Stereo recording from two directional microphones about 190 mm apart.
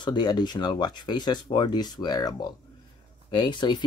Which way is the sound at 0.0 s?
25° left (ahead or behind).